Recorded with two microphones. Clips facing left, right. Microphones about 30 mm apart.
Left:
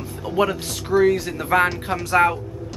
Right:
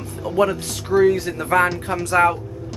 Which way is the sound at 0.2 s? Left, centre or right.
Centre.